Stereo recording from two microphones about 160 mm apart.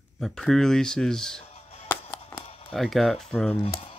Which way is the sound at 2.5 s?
35° left (ahead or behind).